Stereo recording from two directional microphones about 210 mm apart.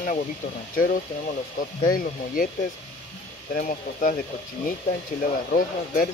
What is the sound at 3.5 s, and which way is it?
Speech, 40° left (ahead or behind).